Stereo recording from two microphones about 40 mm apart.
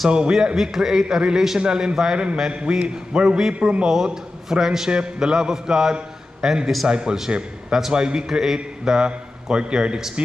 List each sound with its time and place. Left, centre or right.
0.1 s a man's voice: centre
1.6 s a man's voice: right
3.9 s a man's voice: centre
8.5 s a man's voice: right